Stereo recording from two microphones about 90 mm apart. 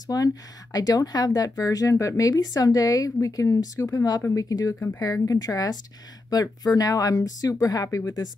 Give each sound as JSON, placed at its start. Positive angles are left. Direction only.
{"t": 0.0, "sound": "speech", "side_deg": 45}